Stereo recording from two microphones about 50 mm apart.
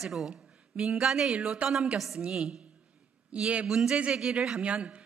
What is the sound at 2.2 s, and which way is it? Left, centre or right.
Speech, centre.